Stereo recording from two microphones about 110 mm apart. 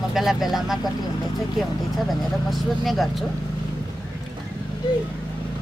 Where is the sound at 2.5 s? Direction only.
Centre (ahead or behind).